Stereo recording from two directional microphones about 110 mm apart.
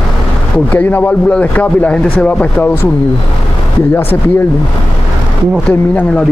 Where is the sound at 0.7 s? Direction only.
15° left (ahead or behind).